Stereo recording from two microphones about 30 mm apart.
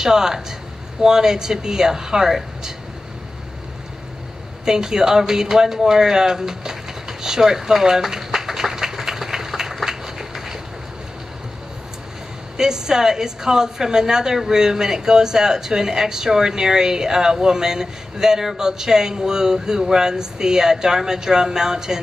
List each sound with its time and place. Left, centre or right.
0.0 s speech: centre
4.6 s a sound: centre
12.5 s speech: right